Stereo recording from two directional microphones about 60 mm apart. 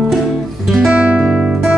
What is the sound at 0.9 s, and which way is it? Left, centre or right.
Guitar, right.